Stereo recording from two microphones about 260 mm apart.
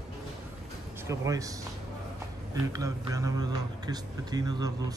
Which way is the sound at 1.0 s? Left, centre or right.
Centre.